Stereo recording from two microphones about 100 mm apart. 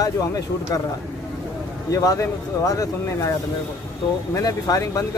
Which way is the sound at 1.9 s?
35° left (ahead or behind).